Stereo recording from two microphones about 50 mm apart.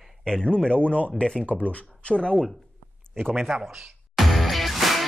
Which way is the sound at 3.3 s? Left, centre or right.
Centre.